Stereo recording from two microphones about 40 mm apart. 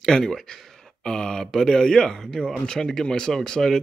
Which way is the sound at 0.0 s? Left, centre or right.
Centre.